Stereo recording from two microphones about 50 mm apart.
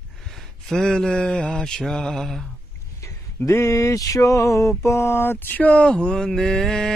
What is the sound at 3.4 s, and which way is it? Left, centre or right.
Mantra, left.